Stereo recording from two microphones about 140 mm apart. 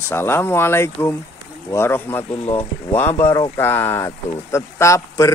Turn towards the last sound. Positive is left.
turn(degrees=20)  # may be behind; listen again after turning